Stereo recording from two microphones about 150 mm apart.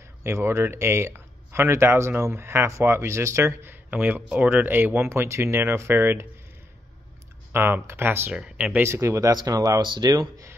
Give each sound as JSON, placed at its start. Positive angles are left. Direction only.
{"t": 0.2, "sound": "speech", "side_deg": -15}
{"t": 7.5, "sound": "speech", "side_deg": -15}